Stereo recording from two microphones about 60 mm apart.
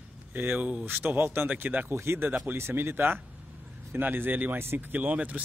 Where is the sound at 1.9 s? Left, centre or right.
Right.